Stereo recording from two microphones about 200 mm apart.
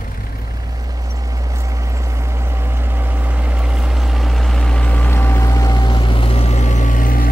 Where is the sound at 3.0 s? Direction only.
10° right (ahead or behind).